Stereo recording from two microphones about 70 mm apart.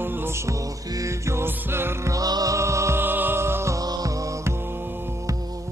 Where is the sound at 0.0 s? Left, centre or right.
Right.